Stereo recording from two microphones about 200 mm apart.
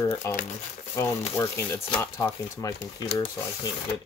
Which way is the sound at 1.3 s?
15° left (ahead or behind).